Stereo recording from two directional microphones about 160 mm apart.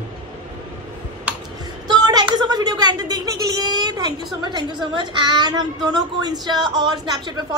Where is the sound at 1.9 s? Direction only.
25° right (ahead or behind).